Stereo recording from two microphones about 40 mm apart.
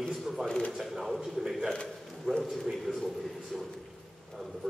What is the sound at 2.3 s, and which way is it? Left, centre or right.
Speech, centre.